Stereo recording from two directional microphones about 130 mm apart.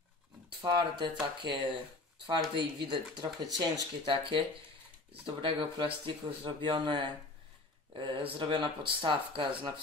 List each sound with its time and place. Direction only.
0.6 s speech: 35° right (ahead or behind)